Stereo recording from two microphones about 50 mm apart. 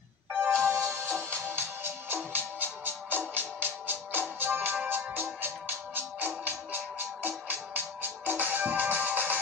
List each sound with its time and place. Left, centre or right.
0.3 s music: right